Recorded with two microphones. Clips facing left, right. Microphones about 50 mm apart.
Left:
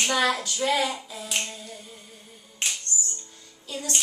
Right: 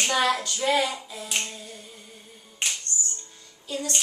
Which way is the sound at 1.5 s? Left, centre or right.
Centre.